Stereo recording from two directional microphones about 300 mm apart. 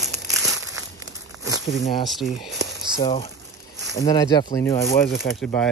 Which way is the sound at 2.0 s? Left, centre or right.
Centre.